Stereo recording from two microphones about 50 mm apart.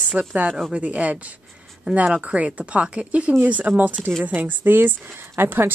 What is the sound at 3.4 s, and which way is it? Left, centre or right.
A woman's voice, right.